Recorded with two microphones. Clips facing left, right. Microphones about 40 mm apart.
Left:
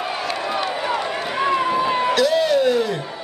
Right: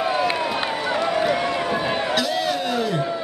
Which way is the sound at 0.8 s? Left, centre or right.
Centre.